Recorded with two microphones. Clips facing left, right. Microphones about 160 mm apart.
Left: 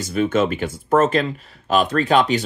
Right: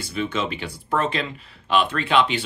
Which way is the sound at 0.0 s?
45° left (ahead or behind).